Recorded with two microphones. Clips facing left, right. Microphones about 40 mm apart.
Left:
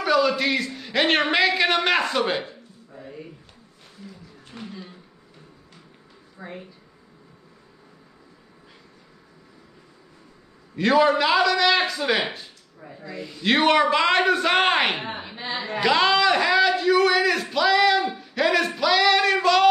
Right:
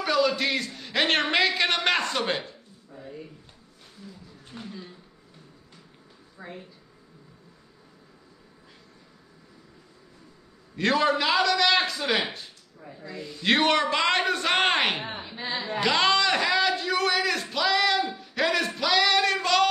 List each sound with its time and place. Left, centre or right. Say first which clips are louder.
0.0 s a man's voice: left 3 dB; centre
6.4 s speech: left 3 dB; centre
10.8 s a man's voice: left 5 dB; centre
15.2 s a sound: left 1 dB; centre